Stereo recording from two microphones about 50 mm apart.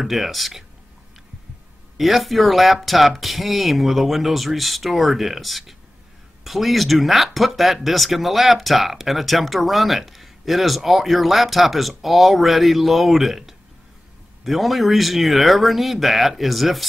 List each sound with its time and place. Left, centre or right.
0.0 s speech: centre
2.0 s speech: centre